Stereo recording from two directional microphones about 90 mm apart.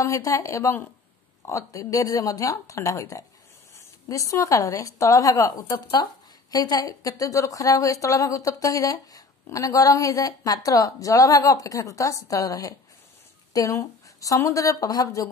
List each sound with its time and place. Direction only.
0.0 s a woman's voice: 35° left (ahead or behind)